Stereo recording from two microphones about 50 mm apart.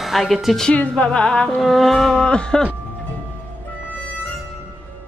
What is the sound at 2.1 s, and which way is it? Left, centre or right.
Speech, centre.